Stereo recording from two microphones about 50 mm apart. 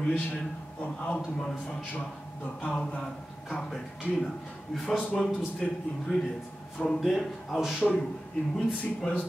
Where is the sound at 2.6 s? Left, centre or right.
Left.